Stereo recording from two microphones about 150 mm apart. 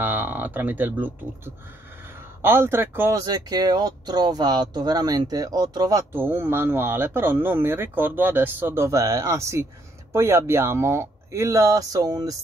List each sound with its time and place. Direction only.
0.0 s speech: 15° right (ahead or behind)